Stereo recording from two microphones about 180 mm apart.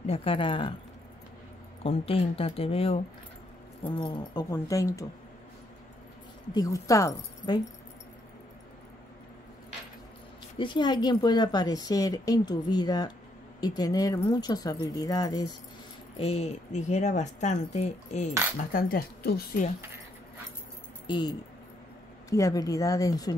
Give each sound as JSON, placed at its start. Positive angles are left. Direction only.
{"t": 0.0, "sound": "speech", "side_deg": 30}
{"t": 1.8, "sound": "speech", "side_deg": 35}
{"t": 4.0, "sound": "speech", "side_deg": 25}
{"t": 6.5, "sound": "speech", "side_deg": 20}
{"t": 10.6, "sound": "speech", "side_deg": 25}
{"t": 16.2, "sound": "speech", "side_deg": 35}
{"t": 18.7, "sound": "speech", "side_deg": 55}
{"t": 21.1, "sound": "speech", "side_deg": 25}